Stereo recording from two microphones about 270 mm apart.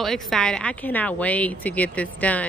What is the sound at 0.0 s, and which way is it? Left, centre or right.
Speech, centre.